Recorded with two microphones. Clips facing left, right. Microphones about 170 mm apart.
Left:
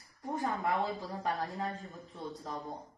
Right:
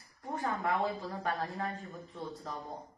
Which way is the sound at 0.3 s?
20° left (ahead or behind).